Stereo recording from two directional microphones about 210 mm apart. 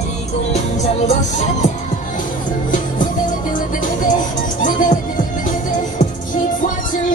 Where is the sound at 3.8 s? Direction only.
40° left (ahead or behind).